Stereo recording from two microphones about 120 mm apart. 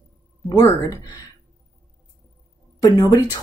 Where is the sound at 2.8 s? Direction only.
30° left (ahead or behind).